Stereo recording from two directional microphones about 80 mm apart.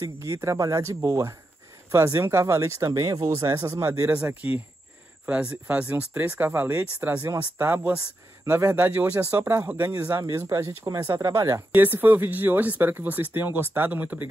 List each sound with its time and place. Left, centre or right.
0.0 s speech: right
4.1 s speech: centre
9.2 s speech: right
11.7 s speech: right